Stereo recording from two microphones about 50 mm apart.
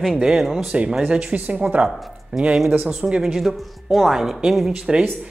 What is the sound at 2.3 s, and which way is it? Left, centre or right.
Speech, centre.